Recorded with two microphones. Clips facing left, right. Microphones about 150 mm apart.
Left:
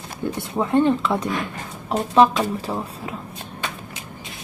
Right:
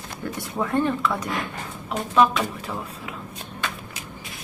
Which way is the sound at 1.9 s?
35° left (ahead or behind).